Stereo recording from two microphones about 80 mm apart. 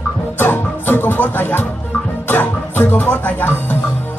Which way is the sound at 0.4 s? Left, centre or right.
Left.